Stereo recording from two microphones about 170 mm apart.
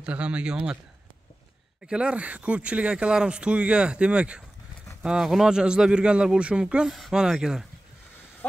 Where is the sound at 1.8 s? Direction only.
5° right (ahead or behind).